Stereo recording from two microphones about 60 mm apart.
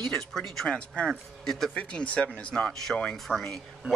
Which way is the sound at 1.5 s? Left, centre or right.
Centre.